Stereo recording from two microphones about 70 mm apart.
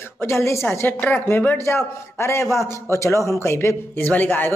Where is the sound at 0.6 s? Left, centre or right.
Left.